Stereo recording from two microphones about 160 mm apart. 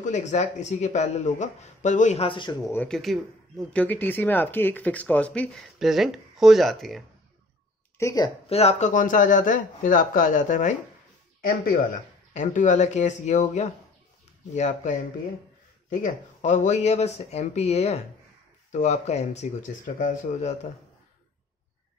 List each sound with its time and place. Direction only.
0.0 s speech: 45° left (ahead or behind)
2.2 s speech: 30° left (ahead or behind)
2.7 s speech: 10° left (ahead or behind)
8.0 s speech: 25° left (ahead or behind)
8.5 s speech: 40° left (ahead or behind)
11.4 s speech: 65° left (ahead or behind)
12.4 s speech: 50° left (ahead or behind)